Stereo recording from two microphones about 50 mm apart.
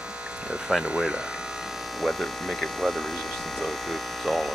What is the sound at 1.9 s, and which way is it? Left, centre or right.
Speech, centre.